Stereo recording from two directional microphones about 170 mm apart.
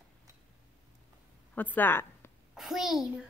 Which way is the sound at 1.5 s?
10° left (ahead or behind).